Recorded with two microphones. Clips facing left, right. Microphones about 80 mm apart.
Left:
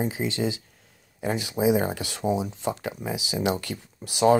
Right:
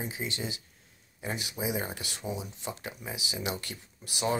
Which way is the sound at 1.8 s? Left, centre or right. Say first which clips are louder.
Left 10 dB; left.